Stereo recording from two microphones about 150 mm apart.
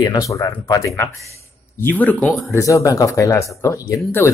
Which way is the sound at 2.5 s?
20° left (ahead or behind).